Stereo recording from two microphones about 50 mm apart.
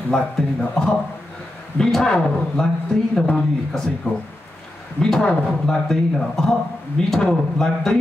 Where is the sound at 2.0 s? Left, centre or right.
Centre.